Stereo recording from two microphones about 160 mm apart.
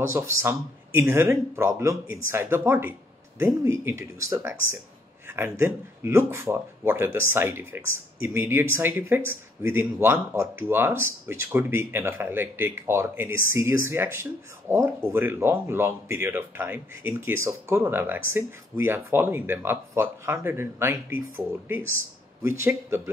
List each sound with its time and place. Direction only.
0.1 s speech: 15° right (ahead or behind)